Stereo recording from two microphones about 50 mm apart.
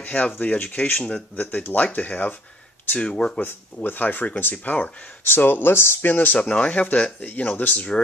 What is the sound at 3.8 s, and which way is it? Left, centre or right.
Speech, left.